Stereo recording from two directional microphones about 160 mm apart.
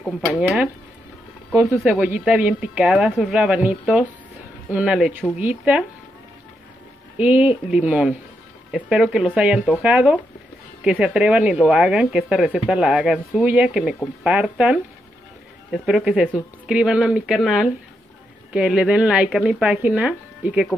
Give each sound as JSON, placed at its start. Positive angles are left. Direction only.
{"t": 1.5, "sound": "speech", "side_deg": -20}
{"t": 1.8, "sound": "speech", "side_deg": -5}
{"t": 7.2, "sound": "speech", "side_deg": -10}